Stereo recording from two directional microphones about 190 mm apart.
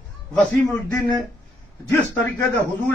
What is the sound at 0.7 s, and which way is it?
Speech, 15° left (ahead or behind).